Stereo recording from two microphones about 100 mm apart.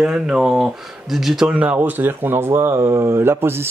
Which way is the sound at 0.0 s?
5° right (ahead or behind).